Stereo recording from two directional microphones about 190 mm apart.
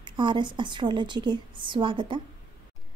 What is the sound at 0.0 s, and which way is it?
A woman's voice, 25° right (ahead or behind).